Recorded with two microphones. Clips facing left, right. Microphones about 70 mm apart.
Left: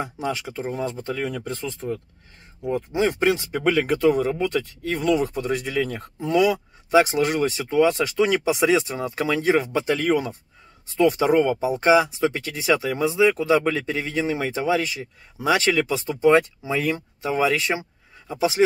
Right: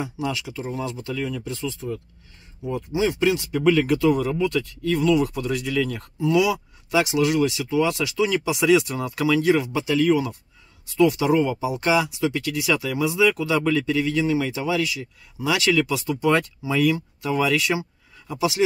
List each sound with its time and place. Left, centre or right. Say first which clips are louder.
0.0 s speech: even; left